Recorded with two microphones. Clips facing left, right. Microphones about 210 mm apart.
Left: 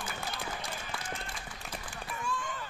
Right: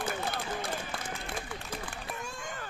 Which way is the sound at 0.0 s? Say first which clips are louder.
Right 5 dB; 55° right (ahead or behind).